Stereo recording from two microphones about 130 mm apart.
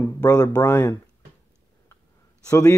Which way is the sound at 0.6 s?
15° left (ahead or behind).